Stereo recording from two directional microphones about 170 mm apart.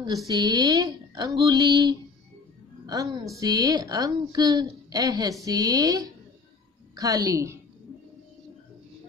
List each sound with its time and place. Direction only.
0.3 s a woman's voice: 25° right (ahead or behind)